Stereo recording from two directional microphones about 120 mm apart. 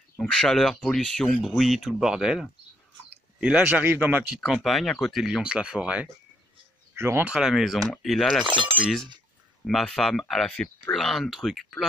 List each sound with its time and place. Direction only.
0.2 s speech: 5° left (ahead or behind); by 4.4 s 15° right (ahead or behind)
4.6 s speech: centre (ahead or behind)
7.0 s speech: 20° right (ahead or behind)
7.2 s speech: 5° right (ahead or behind)
8.5 s speech: 40° right (ahead or behind)
9.7 s speech: centre (ahead or behind)